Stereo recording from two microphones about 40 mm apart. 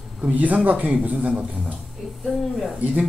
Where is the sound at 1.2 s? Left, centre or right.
Right.